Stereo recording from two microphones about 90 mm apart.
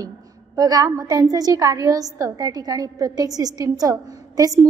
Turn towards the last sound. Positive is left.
turn(degrees=-45)  # may be behind; listen again after turning